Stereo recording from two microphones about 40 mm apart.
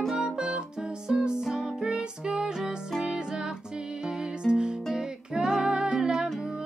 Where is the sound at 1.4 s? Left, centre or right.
Centre.